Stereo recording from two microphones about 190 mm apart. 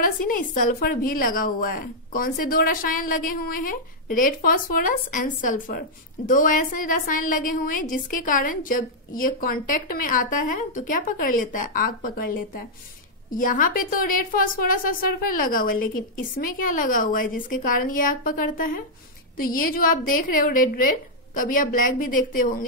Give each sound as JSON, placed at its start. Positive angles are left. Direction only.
{"t": 0.0, "sound": "a woman's voice", "side_deg": 45}